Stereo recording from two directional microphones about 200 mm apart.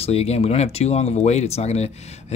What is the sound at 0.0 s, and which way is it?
Speech, 30° left (ahead or behind).